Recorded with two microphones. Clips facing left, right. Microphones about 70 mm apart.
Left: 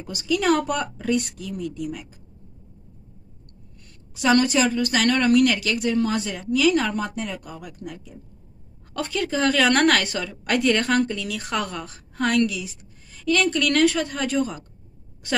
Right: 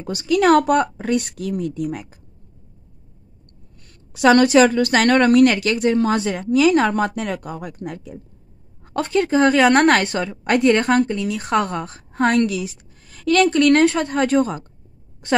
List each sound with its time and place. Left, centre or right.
0.0 s a woman's voice: right
4.3 s a woman's voice: right
6.1 s a woman's voice: right
6.4 s a woman's voice: right
8.9 s a woman's voice: right